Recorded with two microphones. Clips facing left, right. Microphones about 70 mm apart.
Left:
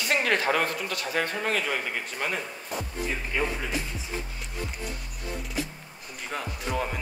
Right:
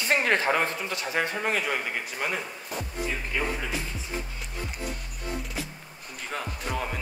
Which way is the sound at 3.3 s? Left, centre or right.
Centre.